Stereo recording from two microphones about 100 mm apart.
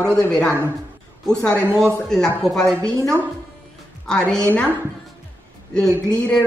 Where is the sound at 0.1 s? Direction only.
10° left (ahead or behind).